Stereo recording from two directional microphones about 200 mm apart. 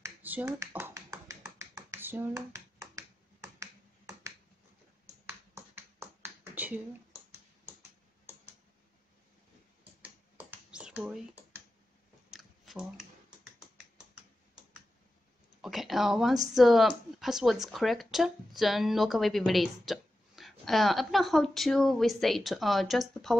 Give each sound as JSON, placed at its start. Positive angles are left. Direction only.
{"t": 0.0, "sound": "finger snapping", "side_deg": -10}
{"t": 5.5, "sound": "finger snapping", "side_deg": -10}
{"t": 10.0, "sound": "finger snapping", "side_deg": -5}
{"t": 12.3, "sound": "a sound", "side_deg": 0}
{"t": 15.6, "sound": "a sound", "side_deg": 0}
{"t": 16.5, "sound": "speech", "side_deg": 0}